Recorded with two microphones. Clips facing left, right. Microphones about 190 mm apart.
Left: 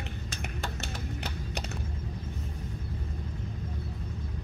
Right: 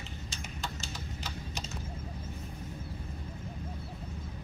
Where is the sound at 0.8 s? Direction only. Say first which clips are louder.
Left 5 dB; 65° left (ahead or behind).